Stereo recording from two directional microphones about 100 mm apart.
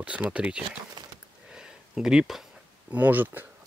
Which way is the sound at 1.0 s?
45° right (ahead or behind).